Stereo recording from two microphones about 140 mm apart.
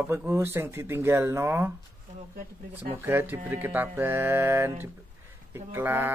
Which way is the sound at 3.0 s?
15° right (ahead or behind).